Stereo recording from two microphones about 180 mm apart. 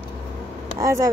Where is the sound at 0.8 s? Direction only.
20° right (ahead or behind).